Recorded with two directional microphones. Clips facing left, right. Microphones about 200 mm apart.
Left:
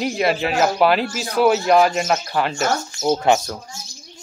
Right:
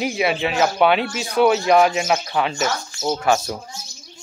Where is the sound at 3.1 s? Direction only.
20° left (ahead or behind).